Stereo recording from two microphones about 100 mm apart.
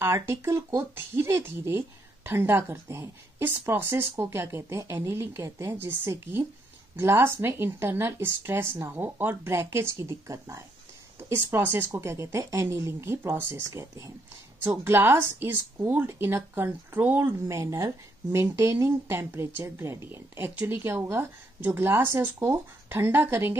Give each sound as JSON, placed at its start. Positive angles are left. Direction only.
{"t": 0.0, "sound": "a woman's voice", "side_deg": -25}
{"t": 17.5, "sound": "a woman's voice", "side_deg": -30}